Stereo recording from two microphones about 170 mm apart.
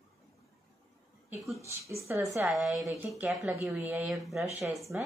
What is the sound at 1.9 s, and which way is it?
Speech, 15° right (ahead or behind).